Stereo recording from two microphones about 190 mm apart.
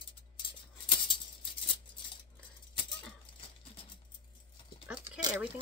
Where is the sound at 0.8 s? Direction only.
25° left (ahead or behind).